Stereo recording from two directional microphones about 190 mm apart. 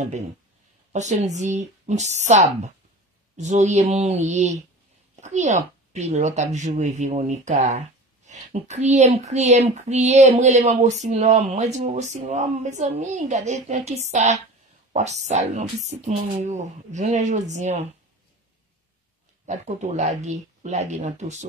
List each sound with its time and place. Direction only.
0.9 s speech: 40° right (ahead or behind)
19.4 s speech: 40° right (ahead or behind)